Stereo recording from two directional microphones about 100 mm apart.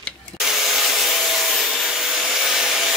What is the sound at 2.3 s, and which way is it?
Wood, 5° right (ahead or behind).